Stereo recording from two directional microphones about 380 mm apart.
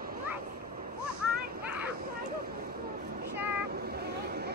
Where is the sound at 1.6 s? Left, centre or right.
Centre.